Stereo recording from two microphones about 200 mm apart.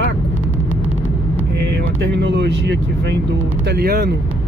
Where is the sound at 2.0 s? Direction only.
60° right (ahead or behind).